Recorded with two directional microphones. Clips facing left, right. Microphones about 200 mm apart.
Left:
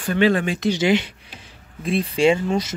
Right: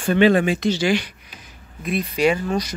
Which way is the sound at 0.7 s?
20° left (ahead or behind).